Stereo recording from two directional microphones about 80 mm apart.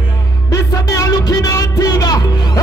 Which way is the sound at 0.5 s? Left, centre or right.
Left.